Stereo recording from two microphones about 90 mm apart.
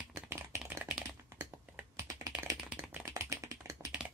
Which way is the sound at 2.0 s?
40° right (ahead or behind).